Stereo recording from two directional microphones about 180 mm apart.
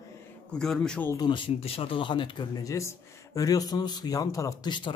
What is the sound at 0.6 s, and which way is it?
Speech, 5° left (ahead or behind).